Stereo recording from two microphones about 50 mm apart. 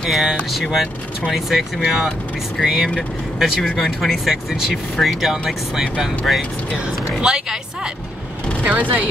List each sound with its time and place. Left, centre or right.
0.0 s speech: centre
3.6 s speech: centre
7.2 s speech: centre
8.6 s speech: right